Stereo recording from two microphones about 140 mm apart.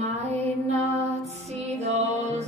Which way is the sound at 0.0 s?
50° right (ahead or behind).